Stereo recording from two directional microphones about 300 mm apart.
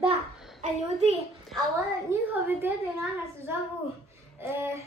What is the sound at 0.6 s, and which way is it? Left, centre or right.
Speech, right.